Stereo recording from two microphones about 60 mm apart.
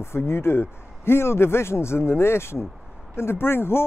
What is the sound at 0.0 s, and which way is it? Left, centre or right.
Speech, left.